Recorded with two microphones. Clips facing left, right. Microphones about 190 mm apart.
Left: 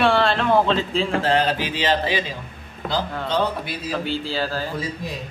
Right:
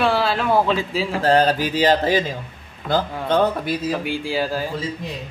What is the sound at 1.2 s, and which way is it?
Mantra, 40° right (ahead or behind).